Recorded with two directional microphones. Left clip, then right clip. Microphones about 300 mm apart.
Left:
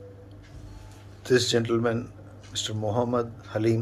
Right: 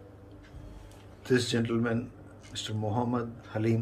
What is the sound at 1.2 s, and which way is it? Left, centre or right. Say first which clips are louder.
Speech: left 5 dB; centre.